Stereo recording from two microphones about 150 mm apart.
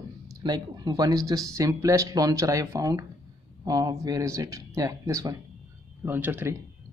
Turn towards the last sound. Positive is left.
turn(degrees=-15)  # may be behind; listen again after turning